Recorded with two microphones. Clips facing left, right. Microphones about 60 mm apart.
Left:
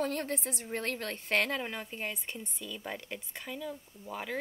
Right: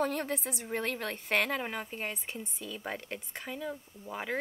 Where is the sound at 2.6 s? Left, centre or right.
Centre.